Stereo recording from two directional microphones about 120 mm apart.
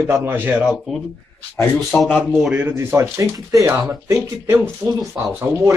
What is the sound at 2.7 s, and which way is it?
Speech, 20° right (ahead or behind).